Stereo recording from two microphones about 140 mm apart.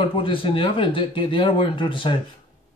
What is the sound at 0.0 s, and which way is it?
Speech, 40° left (ahead or behind).